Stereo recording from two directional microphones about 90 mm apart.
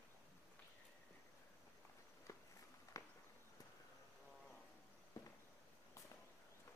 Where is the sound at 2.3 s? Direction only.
35° left (ahead or behind).